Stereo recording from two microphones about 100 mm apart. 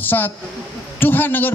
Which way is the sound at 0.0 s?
20° left (ahead or behind).